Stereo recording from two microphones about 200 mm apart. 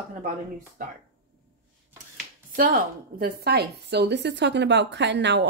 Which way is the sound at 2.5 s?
45° right (ahead or behind).